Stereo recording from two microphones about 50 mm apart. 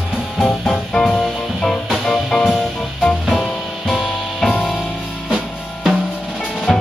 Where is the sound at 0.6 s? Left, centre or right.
Centre.